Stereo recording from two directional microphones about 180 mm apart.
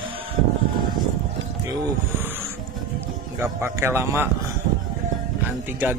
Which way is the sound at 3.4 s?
15° right (ahead or behind).